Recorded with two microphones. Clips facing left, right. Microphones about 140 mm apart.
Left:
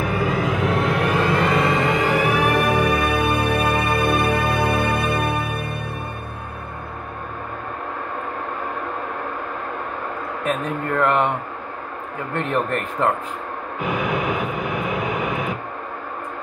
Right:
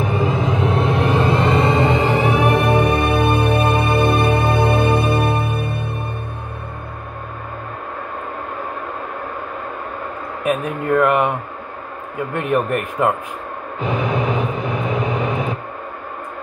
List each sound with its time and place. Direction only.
0.0 s music: 25° right (ahead or behind)
10.4 s a sound: 10° right (ahead or behind)
12.4 s a man's voice: 10° right (ahead or behind)
13.7 s vehicle: 25° right (ahead or behind)